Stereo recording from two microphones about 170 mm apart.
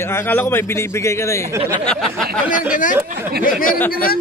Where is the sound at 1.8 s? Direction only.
Centre (ahead or behind).